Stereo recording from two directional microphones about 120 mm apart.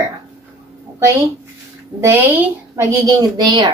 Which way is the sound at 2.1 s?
20° right (ahead or behind).